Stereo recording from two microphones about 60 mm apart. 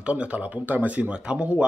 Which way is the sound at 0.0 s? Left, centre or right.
Right.